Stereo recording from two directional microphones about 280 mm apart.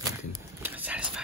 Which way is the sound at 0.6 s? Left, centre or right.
Centre.